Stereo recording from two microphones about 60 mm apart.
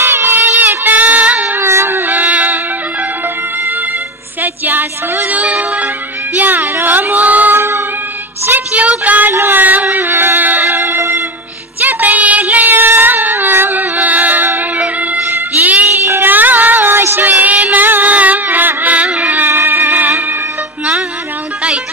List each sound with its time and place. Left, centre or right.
0.0 s a sound: right
1.0 s child singing: right
1.6 s a sound: right
4.4 s music: right
8.5 s child singing: right
9.4 s music: right
11.8 s child singing: right
16.0 s child singing: right
17.0 s music: right